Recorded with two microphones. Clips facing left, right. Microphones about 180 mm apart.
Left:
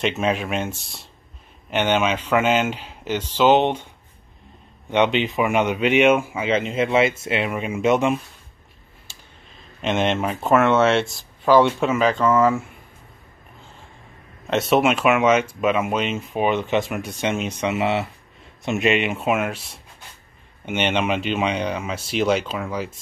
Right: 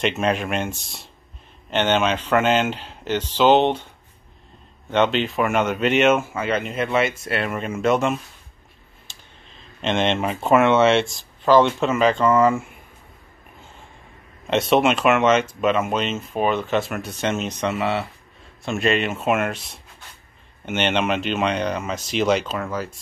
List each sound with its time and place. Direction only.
0.0 s speech: 5° left (ahead or behind)
4.9 s speech: 15° left (ahead or behind)
7.4 s speech: 10° left (ahead or behind)
9.1 s a sound: 10° left (ahead or behind)
9.8 s speech: 5° left (ahead or behind)
14.5 s speech: 5° left (ahead or behind)
17.7 s speech: 25° left (ahead or behind)